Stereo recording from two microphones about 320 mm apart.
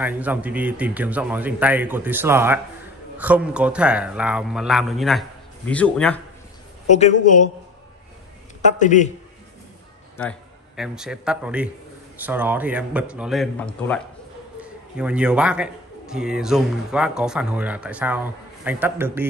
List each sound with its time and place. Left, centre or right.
0.0 s a man's voice: centre
6.9 s a man's voice: left
8.6 s a man's voice: left
10.8 s a man's voice: centre